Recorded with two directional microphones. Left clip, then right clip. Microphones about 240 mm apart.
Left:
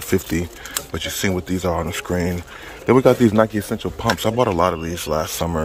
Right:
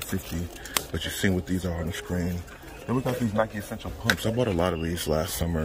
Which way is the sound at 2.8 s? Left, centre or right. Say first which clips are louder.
Left 16 dB; left.